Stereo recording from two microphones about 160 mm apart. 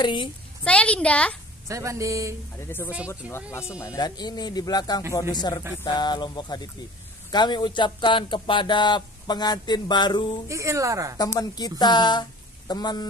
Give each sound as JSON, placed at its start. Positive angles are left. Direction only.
{"t": 0.0, "sound": "speech", "side_deg": 30}
{"t": 0.7, "sound": "a woman's voice", "side_deg": 5}
{"t": 1.7, "sound": "speech", "side_deg": -20}
{"t": 3.2, "sound": "speech", "side_deg": -10}
{"t": 3.7, "sound": "speech", "side_deg": 20}
{"t": 10.5, "sound": "speech", "side_deg": -20}
{"t": 11.1, "sound": "speech", "side_deg": 20}